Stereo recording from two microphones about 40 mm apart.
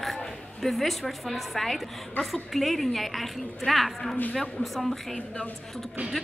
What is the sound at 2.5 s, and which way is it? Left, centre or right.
A woman's voice, centre.